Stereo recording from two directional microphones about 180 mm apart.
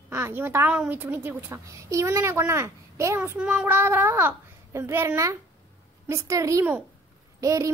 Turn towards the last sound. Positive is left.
turn(degrees=-20)  # may be behind; listen again after turning